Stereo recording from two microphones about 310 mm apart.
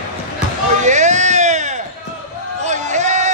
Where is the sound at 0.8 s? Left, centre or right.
Right.